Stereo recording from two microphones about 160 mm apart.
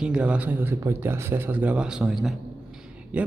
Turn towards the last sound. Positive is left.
turn(degrees=-10)  # may be behind; listen again after turning